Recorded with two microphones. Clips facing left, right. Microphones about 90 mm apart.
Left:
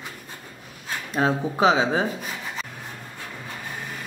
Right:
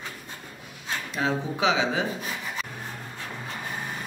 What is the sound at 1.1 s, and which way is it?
Speech, 45° left (ahead or behind).